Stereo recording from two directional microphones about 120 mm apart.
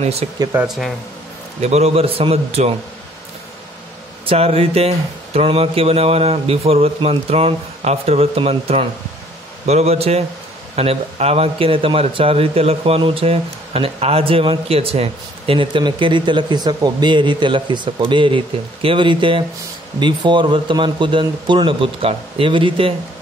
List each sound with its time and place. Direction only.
0.0 s speech: 60° right (ahead or behind)
0.7 s speech: centre (ahead or behind)
1.6 s speech: 65° right (ahead or behind)
4.3 s a man's voice: 55° right (ahead or behind)